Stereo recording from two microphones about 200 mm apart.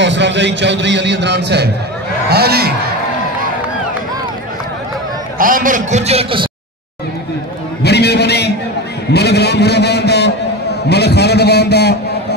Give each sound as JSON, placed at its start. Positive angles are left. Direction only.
{"t": 0.0, "sound": "a man's voice", "side_deg": -60}
{"t": 5.4, "sound": "a man's voice", "side_deg": -45}
{"t": 7.8, "sound": "a sound", "side_deg": 55}
{"t": 9.1, "sound": "a man's voice", "side_deg": 55}